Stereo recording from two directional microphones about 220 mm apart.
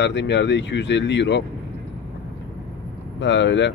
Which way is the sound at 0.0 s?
55° left (ahead or behind).